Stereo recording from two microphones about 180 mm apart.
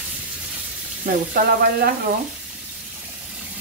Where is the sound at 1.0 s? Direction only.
55° right (ahead or behind).